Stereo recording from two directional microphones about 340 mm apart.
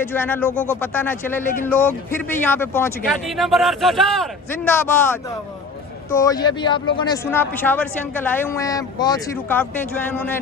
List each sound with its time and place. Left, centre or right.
0.0 s speech: centre
1.4 s speech: left
1.7 s speech: centre